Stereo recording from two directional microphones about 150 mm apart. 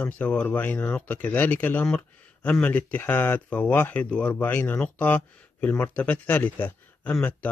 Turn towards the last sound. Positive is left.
turn(degrees=10)  # may be behind; listen again after turning